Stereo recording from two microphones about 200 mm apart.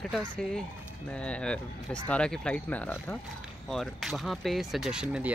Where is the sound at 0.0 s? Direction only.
5° left (ahead or behind).